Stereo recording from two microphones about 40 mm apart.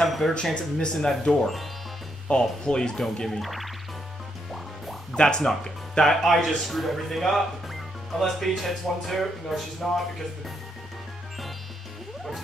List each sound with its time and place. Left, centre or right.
0.0 s speech: centre
0.6 s speech: centre
3.3 s speech: centre
5.1 s speech: centre